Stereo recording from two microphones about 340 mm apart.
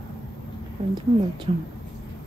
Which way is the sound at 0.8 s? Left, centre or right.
Centre.